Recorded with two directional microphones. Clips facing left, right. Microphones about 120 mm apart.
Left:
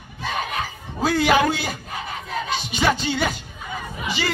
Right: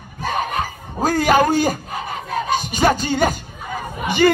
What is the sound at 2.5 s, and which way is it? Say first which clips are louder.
Speech: right 4 dB; 45° right (ahead or behind).